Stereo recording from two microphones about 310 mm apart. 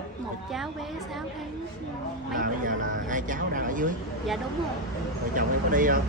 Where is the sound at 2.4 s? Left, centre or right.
Right.